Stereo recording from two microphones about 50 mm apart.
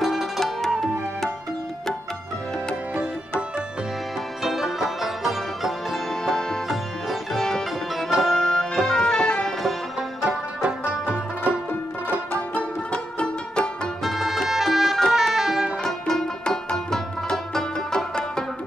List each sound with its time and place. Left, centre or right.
0.0 s music: centre
3.0 s music: right
4.4 s music: centre
6.2 s music: centre
6.7 s music: centre
8.4 s music: centre
9.9 s music: centre
12.5 s music: left
14.0 s music: centre
15.8 s music: centre